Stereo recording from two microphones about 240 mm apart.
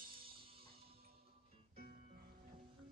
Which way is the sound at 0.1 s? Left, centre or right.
Right.